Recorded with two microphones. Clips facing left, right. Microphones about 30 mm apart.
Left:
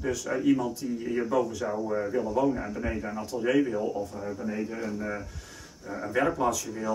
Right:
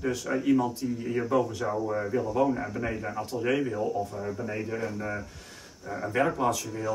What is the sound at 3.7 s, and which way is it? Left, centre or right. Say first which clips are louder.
A man's voice: even; centre.